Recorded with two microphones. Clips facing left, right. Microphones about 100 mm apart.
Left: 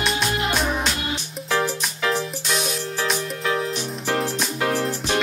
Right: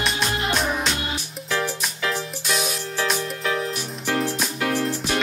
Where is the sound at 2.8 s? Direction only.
20° left (ahead or behind).